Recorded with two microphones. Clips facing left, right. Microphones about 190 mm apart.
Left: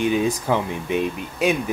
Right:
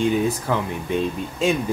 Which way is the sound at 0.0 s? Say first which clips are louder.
Even; 15° left (ahead or behind).